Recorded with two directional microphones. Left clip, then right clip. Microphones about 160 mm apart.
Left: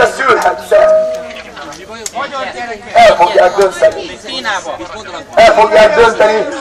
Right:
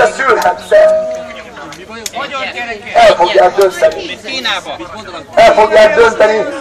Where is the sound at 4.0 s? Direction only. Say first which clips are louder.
Right 2 dB; 55° right (ahead or behind).